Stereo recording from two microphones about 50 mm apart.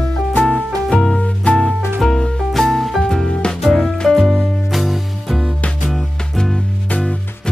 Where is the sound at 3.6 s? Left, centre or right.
Centre.